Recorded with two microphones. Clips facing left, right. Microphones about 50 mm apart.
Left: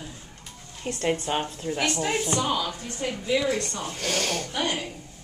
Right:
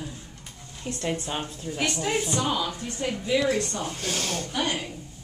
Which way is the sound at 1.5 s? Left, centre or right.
Left.